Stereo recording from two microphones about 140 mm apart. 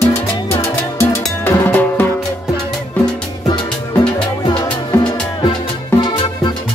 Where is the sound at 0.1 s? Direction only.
20° left (ahead or behind).